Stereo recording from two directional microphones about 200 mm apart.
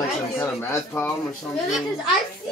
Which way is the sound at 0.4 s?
10° left (ahead or behind).